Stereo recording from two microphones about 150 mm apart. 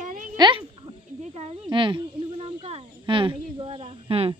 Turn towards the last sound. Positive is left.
turn(degrees=-40)  # may be behind; listen again after turning